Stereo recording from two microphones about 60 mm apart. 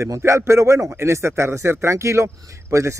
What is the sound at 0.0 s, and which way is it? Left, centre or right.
Speech, right.